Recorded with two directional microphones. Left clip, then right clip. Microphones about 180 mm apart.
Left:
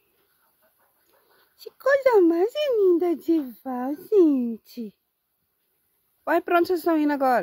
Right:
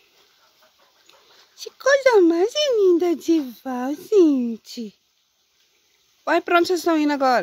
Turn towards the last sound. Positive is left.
turn(degrees=20)  # may be behind; listen again after turning